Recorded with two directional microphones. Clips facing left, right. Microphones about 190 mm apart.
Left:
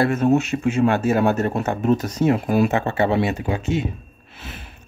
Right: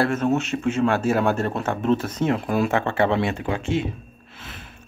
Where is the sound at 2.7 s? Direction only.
5° left (ahead or behind).